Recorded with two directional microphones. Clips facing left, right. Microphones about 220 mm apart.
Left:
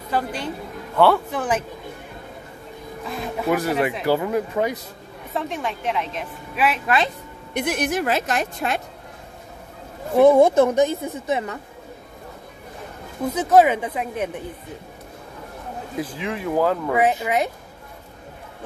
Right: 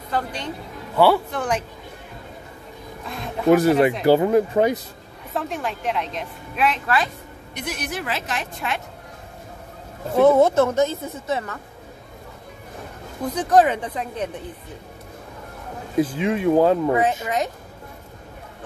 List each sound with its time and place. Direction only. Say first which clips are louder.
0.1 s speech: left 2 dB; 5° left (ahead or behind)
0.9 s a woman's voice: even; 5° right (ahead or behind)
3.4 s speech: right 7 dB; 25° right (ahead or behind)
5.3 s a woman's voice: even; centre (ahead or behind)
7.5 s a woman's voice: left 7 dB; 55° left (ahead or behind)
10.1 s speech: left 2 dB; 15° left (ahead or behind)
13.3 s speech: left 2 dB; 5° left (ahead or behind)
16.0 s speech: right 8 dB; 25° right (ahead or behind)
16.9 s speech: left 1 dB; 10° left (ahead or behind)